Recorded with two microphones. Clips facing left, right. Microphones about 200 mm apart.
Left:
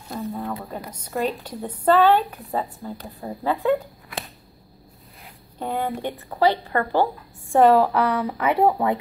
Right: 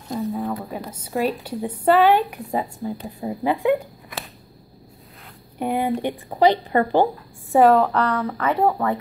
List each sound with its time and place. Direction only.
0.2 s a sound: 5° right (ahead or behind)
0.7 s a woman's voice: 5° right (ahead or behind)
5.6 s a woman's voice: 15° right (ahead or behind)
7.5 s a woman's voice: centre (ahead or behind)